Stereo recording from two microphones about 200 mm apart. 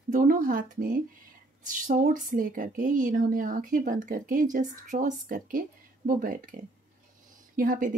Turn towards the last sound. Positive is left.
turn(degrees=-40)  # may be behind; listen again after turning